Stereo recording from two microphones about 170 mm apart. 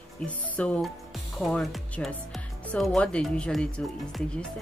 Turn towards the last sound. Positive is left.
turn(degrees=5)  # may be behind; listen again after turning